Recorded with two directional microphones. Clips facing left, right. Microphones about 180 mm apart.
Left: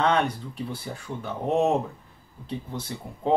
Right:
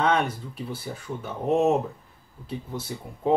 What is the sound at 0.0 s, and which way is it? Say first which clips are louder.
Speech: even; 5° right (ahead or behind).